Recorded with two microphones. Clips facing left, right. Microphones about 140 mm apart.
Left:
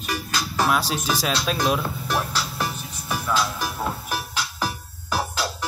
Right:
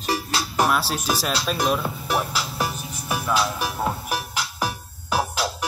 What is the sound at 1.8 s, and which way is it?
Music, 5° right (ahead or behind).